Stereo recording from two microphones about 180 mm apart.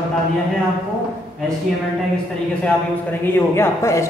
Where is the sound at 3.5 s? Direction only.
15° left (ahead or behind).